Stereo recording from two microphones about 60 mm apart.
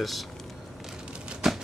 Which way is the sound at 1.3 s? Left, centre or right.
Centre.